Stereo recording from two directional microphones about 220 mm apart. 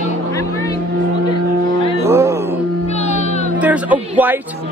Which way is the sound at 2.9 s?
30° left (ahead or behind).